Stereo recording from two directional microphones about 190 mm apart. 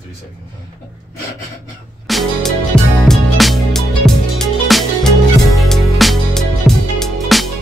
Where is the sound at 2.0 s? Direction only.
Centre (ahead or behind).